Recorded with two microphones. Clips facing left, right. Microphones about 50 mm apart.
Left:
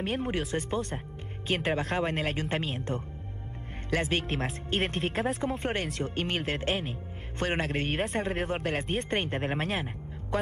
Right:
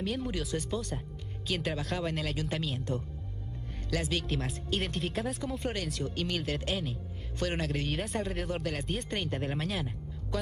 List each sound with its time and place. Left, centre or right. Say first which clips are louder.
0.0 s speech: left 3 dB; left